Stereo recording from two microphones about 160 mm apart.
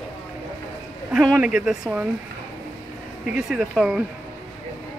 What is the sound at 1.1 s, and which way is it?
Speech, 5° right (ahead or behind).